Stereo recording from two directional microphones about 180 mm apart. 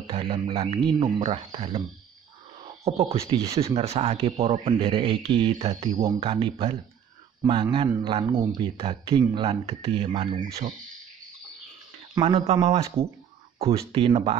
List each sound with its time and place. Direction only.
0.0 s a man's voice: 30° right (ahead or behind)
2.8 s a man's voice: 35° right (ahead or behind)
8.0 s a man's voice: 30° right (ahead or behind)
12.2 s a man's voice: 30° right (ahead or behind)